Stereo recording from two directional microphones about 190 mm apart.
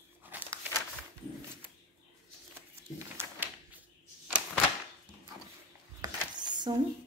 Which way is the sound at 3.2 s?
10° right (ahead or behind).